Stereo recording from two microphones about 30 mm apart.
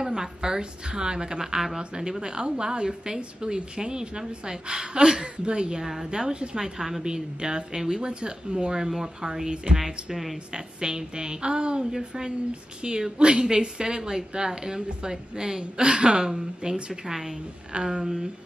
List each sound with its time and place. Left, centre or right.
0.0 s a woman's voice: right
5.8 s a woman's voice: centre
6.0 s a woman's voice: right
6.8 s a woman's voice: centre
7.1 s a woman's voice: right
8.1 s a woman's voice: right
10.1 s speech: centre
10.5 s a woman's voice: right
15.8 s speech: right
16.3 s a woman's voice: centre
17.7 s a woman's voice: right